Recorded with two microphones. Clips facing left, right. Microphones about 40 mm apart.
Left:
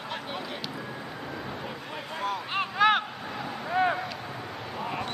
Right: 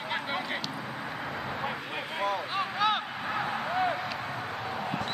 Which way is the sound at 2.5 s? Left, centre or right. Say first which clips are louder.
Left 8 dB; left.